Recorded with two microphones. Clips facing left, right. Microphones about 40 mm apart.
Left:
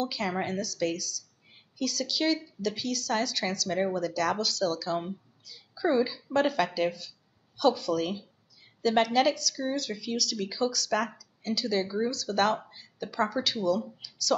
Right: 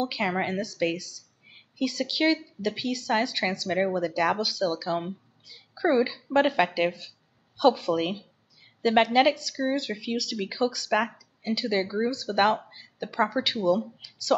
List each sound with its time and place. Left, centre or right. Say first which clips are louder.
0.0 s a woman's voice: right 3 dB; right